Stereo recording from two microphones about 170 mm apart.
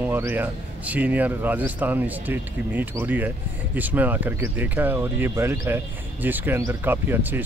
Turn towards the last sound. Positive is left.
turn(degrees=-10)  # may be behind; listen again after turning